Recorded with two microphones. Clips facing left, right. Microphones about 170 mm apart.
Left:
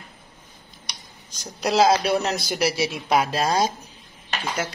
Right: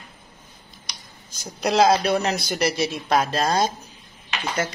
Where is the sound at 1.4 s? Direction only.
Centre (ahead or behind).